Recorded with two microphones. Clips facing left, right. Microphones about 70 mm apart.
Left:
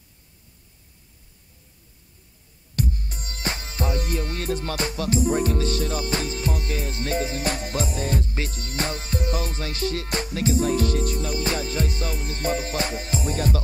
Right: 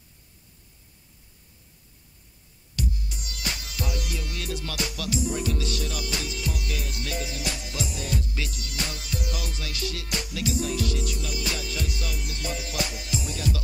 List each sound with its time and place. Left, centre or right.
2.7 s music: left